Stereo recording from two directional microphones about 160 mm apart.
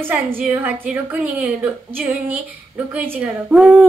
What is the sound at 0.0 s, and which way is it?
A woman's voice, 10° right (ahead or behind).